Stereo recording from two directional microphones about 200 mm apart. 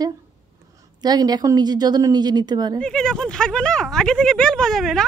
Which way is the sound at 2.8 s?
5° left (ahead or behind).